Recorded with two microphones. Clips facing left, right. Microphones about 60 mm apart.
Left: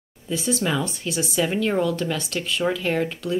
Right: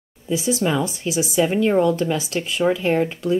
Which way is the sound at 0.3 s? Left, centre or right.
Centre.